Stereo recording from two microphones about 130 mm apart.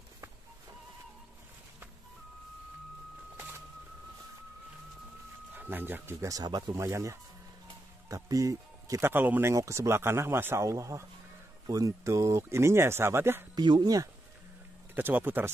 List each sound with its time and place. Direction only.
5.5 s speech: 15° right (ahead or behind)
13.6 s speech: 35° right (ahead or behind)
15.0 s speech: 15° right (ahead or behind)